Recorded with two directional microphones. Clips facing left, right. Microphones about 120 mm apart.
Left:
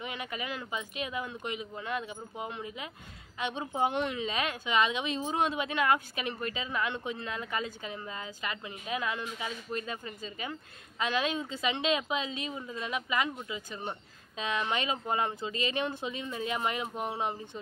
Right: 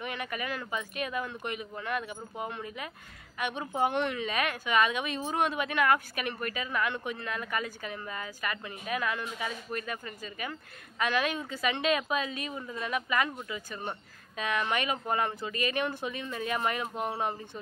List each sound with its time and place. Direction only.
0.0 s a woman's voice: 20° left (ahead or behind)